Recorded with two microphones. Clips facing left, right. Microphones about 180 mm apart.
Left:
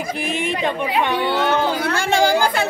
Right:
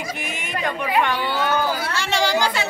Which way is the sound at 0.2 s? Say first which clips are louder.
Left 8 dB; 30° left (ahead or behind).